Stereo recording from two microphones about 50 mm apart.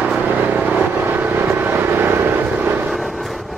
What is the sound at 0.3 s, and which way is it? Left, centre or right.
Vehicle, right.